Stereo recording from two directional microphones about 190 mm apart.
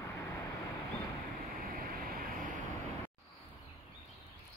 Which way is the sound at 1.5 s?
50° right (ahead or behind).